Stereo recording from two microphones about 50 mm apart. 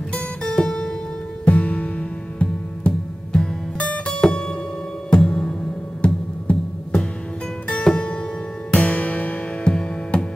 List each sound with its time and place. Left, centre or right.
0.5 s music: centre
1.4 s music: left
4.2 s music: centre
6.0 s music: left
7.6 s music: centre
8.7 s music: left